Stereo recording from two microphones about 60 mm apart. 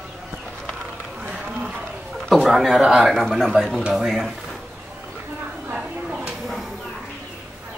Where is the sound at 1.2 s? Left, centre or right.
Centre.